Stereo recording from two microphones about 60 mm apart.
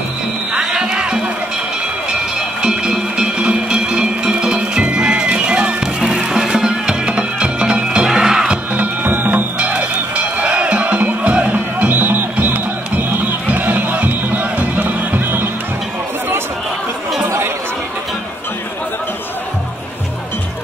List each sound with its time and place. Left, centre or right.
0.5 s music: centre
2.6 s music: centre
8.5 s music: right
9.6 s music: right